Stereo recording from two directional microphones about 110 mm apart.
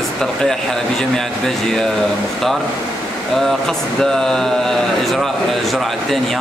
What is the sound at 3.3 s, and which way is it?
Speech, centre (ahead or behind).